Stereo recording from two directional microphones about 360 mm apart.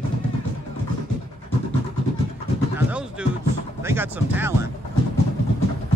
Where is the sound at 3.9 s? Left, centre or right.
Centre.